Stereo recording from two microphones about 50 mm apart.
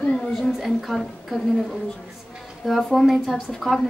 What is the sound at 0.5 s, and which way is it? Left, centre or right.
Speech, centre.